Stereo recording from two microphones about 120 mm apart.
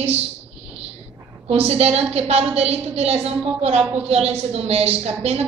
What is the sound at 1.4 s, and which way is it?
A woman's voice, 60° right (ahead or behind).